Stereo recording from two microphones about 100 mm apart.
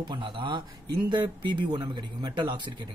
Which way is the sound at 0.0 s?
50° right (ahead or behind).